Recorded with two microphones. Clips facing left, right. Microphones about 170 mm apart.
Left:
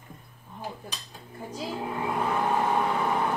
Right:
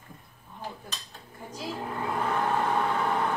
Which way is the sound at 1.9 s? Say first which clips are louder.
Left 1 dB; 10° left (ahead or behind).